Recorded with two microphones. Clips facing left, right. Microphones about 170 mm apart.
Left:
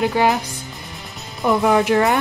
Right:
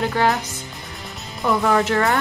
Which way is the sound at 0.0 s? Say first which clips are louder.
Left 2 dB; 15° left (ahead or behind).